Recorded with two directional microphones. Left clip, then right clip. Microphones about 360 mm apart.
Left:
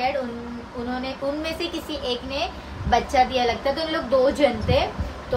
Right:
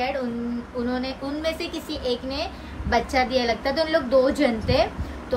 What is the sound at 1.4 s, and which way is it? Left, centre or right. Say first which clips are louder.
Speech: even; centre.